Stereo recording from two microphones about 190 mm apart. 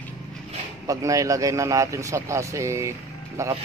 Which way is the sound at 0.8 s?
15° right (ahead or behind).